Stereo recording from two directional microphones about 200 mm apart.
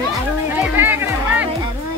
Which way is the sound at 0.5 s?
10° right (ahead or behind).